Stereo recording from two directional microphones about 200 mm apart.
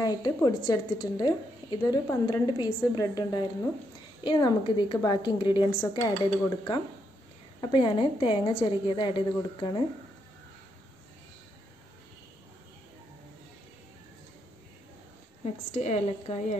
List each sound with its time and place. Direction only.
0.0 s a woman's voice: 20° left (ahead or behind)
15.7 s a woman's voice: 35° left (ahead or behind)